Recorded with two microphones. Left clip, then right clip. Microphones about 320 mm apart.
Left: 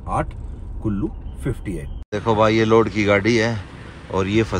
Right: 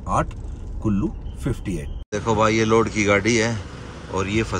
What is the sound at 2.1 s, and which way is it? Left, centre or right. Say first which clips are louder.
Speech: left 2 dB; centre.